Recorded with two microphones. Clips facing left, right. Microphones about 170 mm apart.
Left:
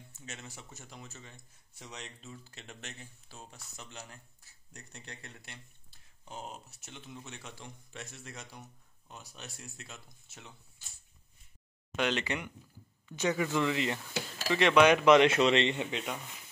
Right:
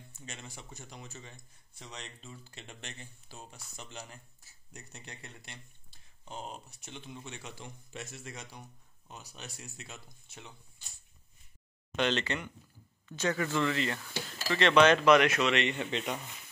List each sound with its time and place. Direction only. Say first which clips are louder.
0.1 s speech: even; 5° left (ahead or behind)
12.0 s speech: right 1 dB; 10° left (ahead or behind); by 15.8 s 25° left (ahead or behind)
15.8 s speech: right 1 dB; 5° left (ahead or behind)